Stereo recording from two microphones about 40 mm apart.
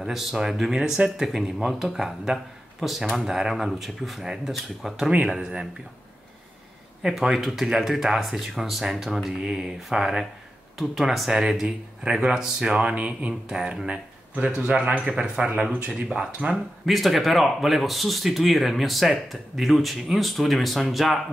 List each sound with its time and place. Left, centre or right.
0.0 s speech: centre
1.7 s speech: centre
5.4 s speech: centre
7.0 s speech: centre
11.6 s speech: centre
12.8 s speech: right
13.5 s speech: centre
14.3 s speech: right
15.9 s speech: centre
16.8 s speech: centre